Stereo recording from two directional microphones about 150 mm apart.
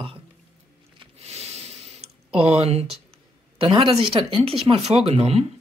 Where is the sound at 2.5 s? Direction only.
45° right (ahead or behind).